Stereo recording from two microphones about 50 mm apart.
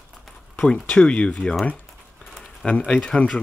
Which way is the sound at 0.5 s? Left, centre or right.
Centre.